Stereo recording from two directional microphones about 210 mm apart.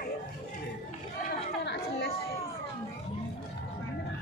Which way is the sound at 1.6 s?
50° left (ahead or behind).